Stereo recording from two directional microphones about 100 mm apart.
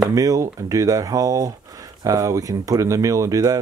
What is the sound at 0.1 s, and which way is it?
Speech, 35° right (ahead or behind).